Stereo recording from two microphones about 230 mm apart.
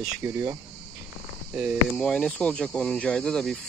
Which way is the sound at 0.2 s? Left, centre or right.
Centre.